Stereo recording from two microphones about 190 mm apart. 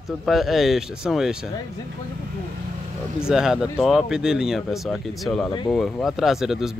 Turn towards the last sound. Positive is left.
turn(degrees=0)  # may be behind; listen again after turning